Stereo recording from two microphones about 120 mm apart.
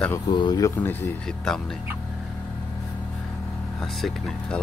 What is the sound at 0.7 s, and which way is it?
Speech, 15° left (ahead or behind).